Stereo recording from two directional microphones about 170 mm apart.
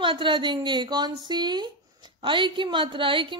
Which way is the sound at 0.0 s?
30° right (ahead or behind).